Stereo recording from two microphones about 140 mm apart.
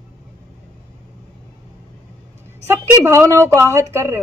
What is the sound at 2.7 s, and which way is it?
A man's voice, 20° right (ahead or behind).